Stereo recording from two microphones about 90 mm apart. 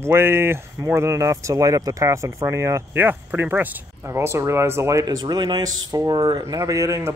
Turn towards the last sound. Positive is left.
turn(degrees=-35)  # may be behind; listen again after turning